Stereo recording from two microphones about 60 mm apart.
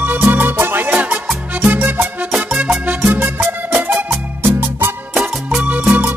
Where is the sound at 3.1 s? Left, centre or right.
Right.